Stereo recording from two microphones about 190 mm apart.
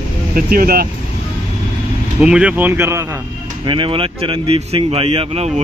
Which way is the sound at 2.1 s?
5° right (ahead or behind).